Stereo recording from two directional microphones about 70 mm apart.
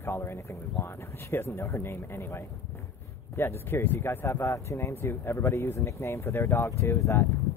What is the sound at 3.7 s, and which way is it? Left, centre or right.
Speech, left.